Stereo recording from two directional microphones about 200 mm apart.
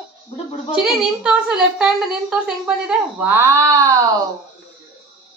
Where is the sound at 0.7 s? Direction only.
Centre (ahead or behind).